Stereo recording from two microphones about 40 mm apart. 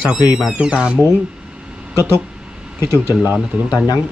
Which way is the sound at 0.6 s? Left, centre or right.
Right.